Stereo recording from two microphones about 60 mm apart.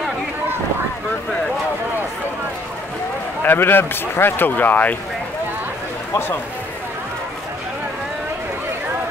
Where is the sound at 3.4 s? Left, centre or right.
Left.